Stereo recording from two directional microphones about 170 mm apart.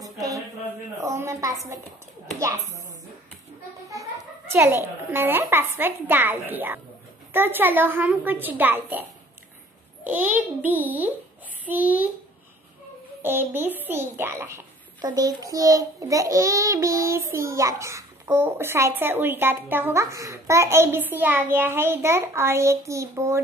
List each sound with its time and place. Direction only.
0.0 s a sound: 20° right (ahead or behind)
1.0 s a child's voice: 15° right (ahead or behind)
3.9 s a child's voice: 15° right (ahead or behind)
10.0 s a child's voice: 10° right (ahead or behind)
13.2 s a child's voice: 10° right (ahead or behind)